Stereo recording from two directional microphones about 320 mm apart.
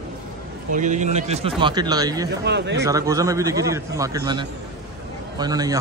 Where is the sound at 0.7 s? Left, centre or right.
Right.